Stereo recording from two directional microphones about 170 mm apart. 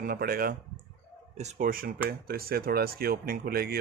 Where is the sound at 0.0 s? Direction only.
65° right (ahead or behind).